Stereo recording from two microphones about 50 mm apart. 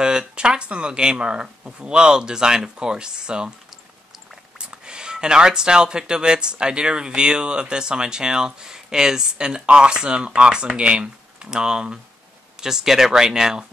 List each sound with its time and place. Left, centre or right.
0.0 s speech: centre
4.6 s speech: centre